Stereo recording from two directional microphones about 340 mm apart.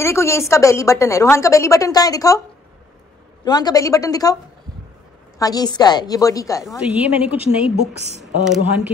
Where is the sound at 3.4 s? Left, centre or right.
Centre.